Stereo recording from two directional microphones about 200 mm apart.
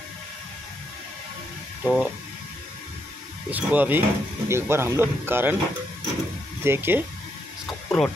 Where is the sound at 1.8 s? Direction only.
5° right (ahead or behind).